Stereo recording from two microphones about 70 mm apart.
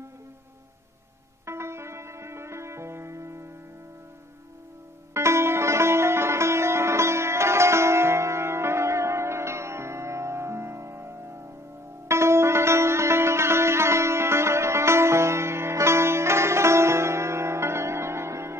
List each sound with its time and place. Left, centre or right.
1.4 s music: right
5.1 s sitar: right